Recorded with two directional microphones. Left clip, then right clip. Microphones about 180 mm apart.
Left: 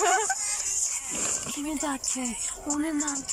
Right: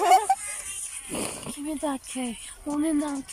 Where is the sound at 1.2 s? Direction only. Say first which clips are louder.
Right 1 dB; 20° right (ahead or behind).